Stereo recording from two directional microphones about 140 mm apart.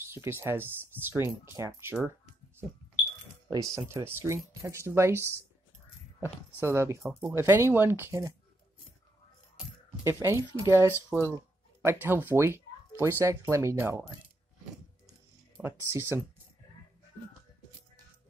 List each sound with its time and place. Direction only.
0.1 s speech: 15° right (ahead or behind)
3.4 s speech: 20° right (ahead or behind)
6.2 s speech: 20° right (ahead or behind)
10.0 s speech: 20° right (ahead or behind)
15.0 s a sound: 15° right (ahead or behind)